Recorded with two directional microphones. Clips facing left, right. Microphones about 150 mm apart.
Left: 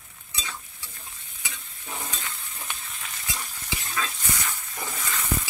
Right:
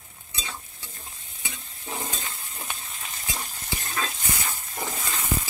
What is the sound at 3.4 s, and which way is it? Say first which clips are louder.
Stir: right 1 dB; 35° right (ahead or behind).